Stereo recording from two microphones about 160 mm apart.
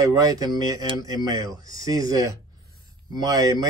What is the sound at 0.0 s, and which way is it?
Speech, 25° right (ahead or behind).